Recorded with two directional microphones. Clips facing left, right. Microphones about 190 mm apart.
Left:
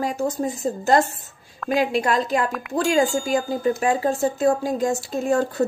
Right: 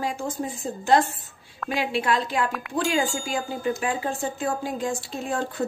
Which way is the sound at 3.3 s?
40° left (ahead or behind).